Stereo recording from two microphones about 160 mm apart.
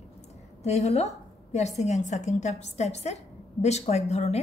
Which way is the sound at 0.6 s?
40° left (ahead or behind).